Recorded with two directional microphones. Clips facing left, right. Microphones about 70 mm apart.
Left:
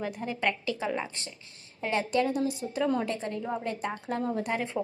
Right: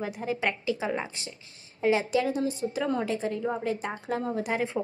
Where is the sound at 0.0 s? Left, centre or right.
Centre.